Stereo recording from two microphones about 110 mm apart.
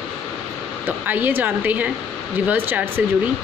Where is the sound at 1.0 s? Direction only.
15° right (ahead or behind).